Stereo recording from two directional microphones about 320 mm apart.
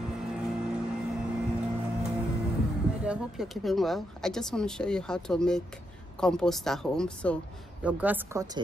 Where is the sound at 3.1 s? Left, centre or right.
Centre.